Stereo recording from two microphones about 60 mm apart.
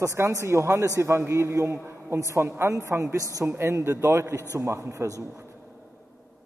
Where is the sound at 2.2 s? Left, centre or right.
Right.